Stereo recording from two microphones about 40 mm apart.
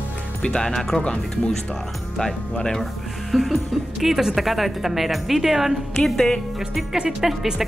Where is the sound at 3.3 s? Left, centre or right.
Centre.